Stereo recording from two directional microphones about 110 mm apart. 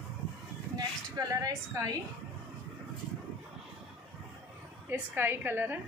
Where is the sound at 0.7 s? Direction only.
35° right (ahead or behind).